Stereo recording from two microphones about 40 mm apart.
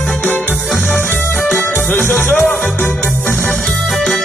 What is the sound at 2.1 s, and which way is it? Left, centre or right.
Music, left.